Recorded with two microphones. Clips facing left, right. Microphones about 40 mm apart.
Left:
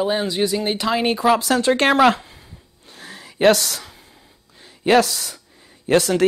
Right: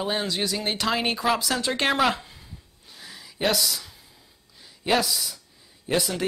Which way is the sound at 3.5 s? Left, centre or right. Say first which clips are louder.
Left 4 dB; left.